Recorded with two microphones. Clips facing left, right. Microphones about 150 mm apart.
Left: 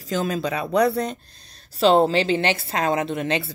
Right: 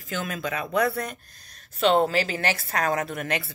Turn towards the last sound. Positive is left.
turn(degrees=25)  # may be behind; listen again after turning